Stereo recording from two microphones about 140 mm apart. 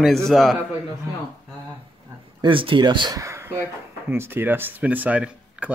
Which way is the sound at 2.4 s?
40° right (ahead or behind).